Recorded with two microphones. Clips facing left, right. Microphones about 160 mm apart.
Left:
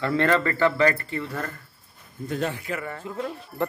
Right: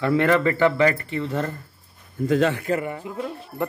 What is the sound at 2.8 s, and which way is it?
Speech, 15° right (ahead or behind).